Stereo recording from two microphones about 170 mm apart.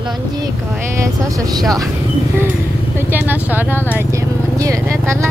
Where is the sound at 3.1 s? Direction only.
10° right (ahead or behind).